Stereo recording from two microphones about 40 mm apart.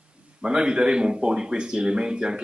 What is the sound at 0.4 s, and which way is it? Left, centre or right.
Speech, right.